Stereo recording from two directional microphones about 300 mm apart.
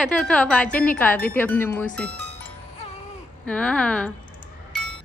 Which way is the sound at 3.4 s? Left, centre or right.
Centre.